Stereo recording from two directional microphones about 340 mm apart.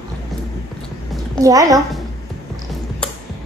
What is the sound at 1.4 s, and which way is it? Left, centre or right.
Speech, centre.